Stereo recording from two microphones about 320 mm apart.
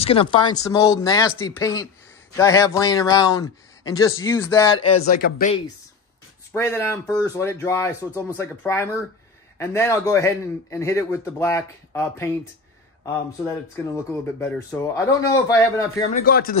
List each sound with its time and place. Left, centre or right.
0.0 s a man's voice: centre
6.5 s a man's voice: centre
13.9 s a man's voice: centre
16.1 s speech: left